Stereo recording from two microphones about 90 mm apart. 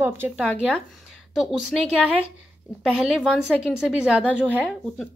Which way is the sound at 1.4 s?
Centre (ahead or behind).